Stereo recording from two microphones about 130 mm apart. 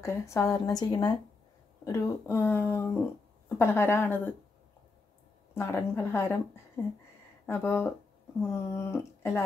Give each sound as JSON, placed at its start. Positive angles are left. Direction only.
{"t": 0.0, "sound": "a woman's voice", "side_deg": 20}
{"t": 5.5, "sound": "a woman's voice", "side_deg": 20}